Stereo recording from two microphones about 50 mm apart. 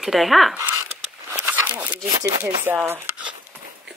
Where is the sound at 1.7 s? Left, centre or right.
Right.